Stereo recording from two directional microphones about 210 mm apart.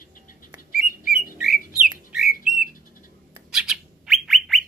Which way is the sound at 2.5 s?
40° left (ahead or behind).